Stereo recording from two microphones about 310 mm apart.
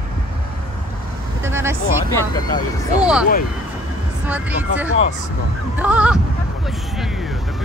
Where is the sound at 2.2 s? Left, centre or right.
Centre.